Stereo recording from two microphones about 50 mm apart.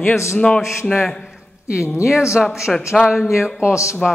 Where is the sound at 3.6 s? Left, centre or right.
Left.